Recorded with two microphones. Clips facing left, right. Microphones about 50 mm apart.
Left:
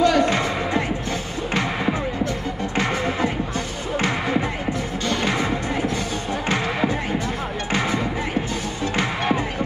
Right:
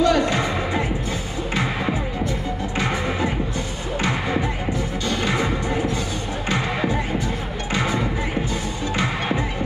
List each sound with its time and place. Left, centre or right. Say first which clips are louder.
0.0 s music: left 1 dB; left
5.0 s music: left 2 dB; left